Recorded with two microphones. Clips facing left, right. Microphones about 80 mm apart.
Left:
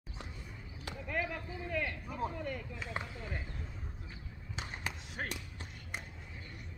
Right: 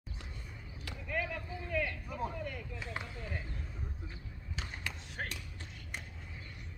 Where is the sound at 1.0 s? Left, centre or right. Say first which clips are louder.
Even; centre.